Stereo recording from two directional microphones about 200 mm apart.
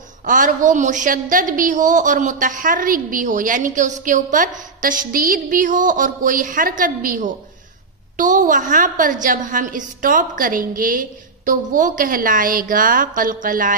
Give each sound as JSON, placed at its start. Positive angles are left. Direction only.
{"t": 0.2, "sound": "a woman's voice", "side_deg": -40}